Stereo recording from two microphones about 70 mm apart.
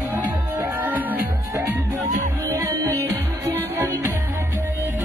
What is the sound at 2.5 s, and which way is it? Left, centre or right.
Music, right.